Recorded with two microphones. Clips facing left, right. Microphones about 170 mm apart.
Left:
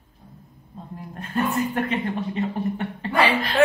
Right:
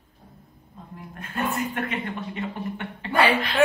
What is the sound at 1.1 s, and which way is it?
Speech, 35° left (ahead or behind).